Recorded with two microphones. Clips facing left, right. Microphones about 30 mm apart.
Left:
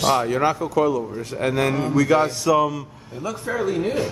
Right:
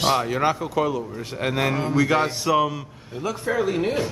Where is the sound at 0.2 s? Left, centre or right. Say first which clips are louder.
Left 2 dB; centre.